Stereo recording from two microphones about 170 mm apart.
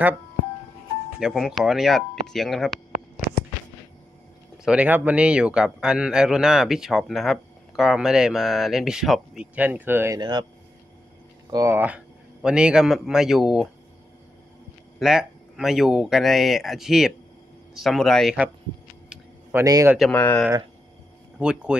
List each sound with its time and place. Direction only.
1.2 s speech: centre (ahead or behind)
4.6 s a man's voice: 10° right (ahead or behind)
11.5 s a man's voice: 15° right (ahead or behind)
15.0 s a man's voice: 5° right (ahead or behind)
19.6 s speech: 20° right (ahead or behind)
20.0 s speech: 10° left (ahead or behind)
21.4 s a man's voice: 5° right (ahead or behind)